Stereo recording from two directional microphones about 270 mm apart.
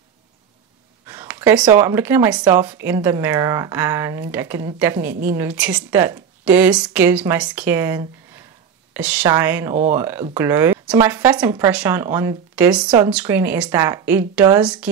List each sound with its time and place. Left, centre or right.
1.0 s speech: centre